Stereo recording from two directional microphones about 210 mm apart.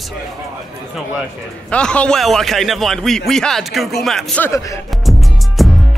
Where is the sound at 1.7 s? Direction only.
5° left (ahead or behind).